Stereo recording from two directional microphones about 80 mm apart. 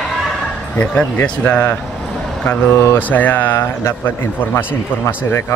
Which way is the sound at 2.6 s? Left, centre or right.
Left.